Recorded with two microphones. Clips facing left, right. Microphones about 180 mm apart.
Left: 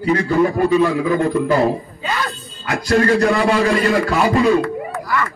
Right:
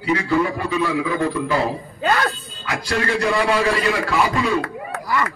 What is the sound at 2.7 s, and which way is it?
Speech, 45° left (ahead or behind).